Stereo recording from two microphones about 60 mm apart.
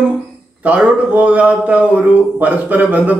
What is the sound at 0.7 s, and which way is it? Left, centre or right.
A man's voice, right.